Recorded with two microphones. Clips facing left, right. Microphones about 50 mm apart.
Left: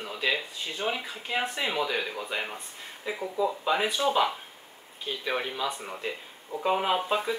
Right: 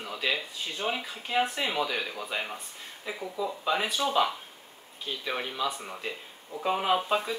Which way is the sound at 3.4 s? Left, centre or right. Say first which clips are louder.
Left 3 dB; centre.